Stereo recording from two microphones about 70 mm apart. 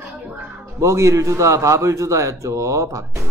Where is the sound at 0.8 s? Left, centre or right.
Right.